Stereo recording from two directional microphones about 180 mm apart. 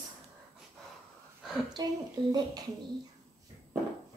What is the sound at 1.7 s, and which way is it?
Speech, 20° right (ahead or behind).